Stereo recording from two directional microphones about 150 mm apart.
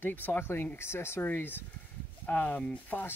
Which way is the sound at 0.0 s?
10° left (ahead or behind).